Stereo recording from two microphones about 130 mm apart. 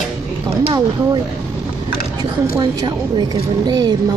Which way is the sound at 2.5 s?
35° right (ahead or behind).